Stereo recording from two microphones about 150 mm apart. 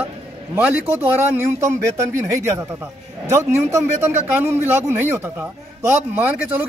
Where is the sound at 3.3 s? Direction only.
20° right (ahead or behind).